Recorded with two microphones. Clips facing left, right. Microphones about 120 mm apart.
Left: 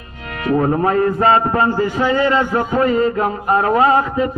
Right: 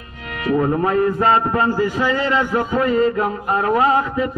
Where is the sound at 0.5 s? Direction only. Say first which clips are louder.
Left 2 dB; 5° left (ahead or behind).